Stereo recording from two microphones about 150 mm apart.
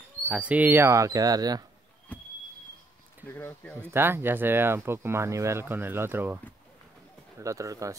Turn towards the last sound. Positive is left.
turn(degrees=-20)  # may be behind; listen again after turning